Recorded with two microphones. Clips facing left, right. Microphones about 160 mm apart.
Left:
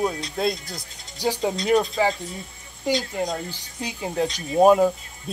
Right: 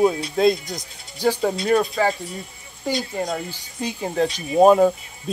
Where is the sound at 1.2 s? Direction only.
15° left (ahead or behind).